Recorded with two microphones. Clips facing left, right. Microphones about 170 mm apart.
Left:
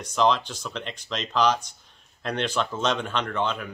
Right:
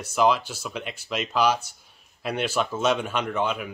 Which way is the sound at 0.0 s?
10° right (ahead or behind).